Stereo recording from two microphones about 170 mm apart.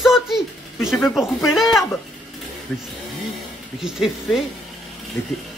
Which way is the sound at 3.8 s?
5° right (ahead or behind).